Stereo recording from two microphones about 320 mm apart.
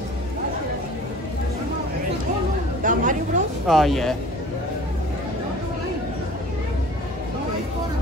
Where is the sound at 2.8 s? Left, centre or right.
Right.